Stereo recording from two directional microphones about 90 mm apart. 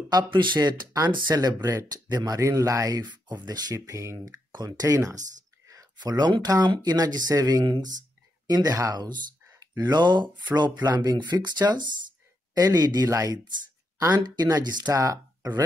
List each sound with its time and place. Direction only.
0.1 s speech: 60° right (ahead or behind); by 4.4 s 35° right (ahead or behind)
4.5 s speech: 45° right (ahead or behind)
8.9 s speech: 50° right (ahead or behind)